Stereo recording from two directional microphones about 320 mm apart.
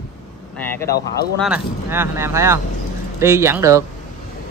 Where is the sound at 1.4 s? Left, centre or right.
Centre.